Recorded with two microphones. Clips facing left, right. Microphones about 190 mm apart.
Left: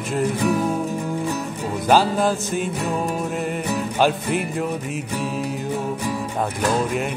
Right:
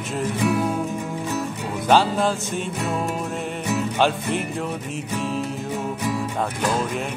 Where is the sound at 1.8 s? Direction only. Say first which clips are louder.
Left 1 dB; 5° left (ahead or behind).